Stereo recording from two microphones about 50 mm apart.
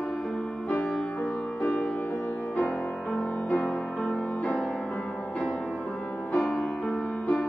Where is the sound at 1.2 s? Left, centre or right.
Left.